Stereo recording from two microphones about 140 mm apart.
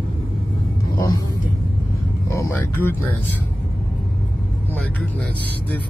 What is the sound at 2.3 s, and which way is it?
Speech, 15° left (ahead or behind).